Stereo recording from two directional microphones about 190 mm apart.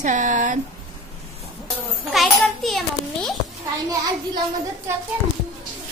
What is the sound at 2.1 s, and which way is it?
Speech, centre (ahead or behind).